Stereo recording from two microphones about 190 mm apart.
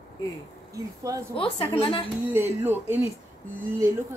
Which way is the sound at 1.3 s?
30° left (ahead or behind).